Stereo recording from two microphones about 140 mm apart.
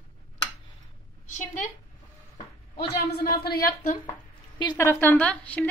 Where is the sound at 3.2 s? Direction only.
90° left.